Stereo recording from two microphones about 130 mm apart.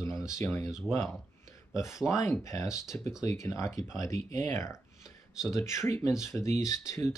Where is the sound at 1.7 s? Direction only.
25° left (ahead or behind).